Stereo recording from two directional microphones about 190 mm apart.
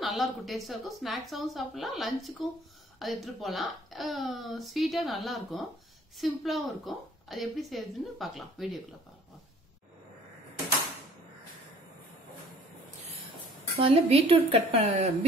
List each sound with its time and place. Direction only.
0.0 s a woman's voice: centre (ahead or behind)
13.7 s speech: 30° right (ahead or behind)